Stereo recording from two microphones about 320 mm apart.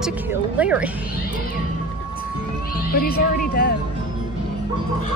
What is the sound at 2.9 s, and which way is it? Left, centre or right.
Speech, left.